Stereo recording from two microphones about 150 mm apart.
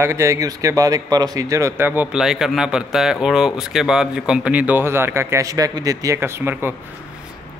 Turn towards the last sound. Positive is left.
turn(degrees=-15)  # may be behind; listen again after turning